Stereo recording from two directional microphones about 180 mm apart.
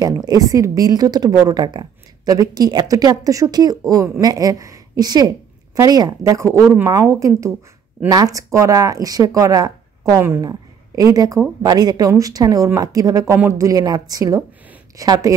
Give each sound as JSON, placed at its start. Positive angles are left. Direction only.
{"t": 0.0, "sound": "a woman's voice", "side_deg": -20}